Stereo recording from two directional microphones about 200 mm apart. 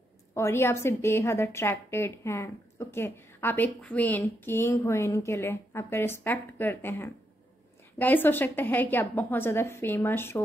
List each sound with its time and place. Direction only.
0.3 s a woman's voice: 15° left (ahead or behind)